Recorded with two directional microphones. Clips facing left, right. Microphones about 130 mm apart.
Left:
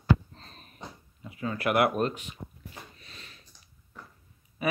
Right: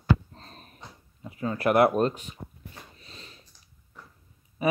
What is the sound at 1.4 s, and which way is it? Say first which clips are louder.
Speech: right 4 dB; 35° right (ahead or behind).